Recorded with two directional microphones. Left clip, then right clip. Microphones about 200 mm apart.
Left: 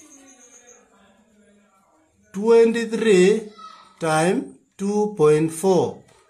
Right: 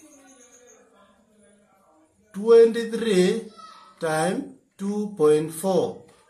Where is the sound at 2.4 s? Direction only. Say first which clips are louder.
Even; 45° left (ahead or behind).